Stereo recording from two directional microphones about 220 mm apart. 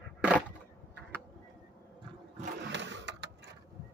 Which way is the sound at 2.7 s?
55° right (ahead or behind).